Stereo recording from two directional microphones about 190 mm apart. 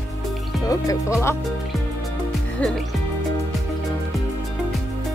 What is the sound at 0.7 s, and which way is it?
Speech, 15° left (ahead or behind).